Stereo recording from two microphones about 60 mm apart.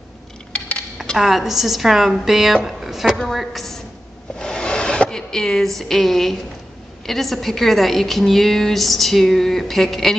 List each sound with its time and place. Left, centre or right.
0.5 s dishes: centre
1.1 s a woman's voice: centre
4.4 s a sound: centre
7.1 s a woman's voice: centre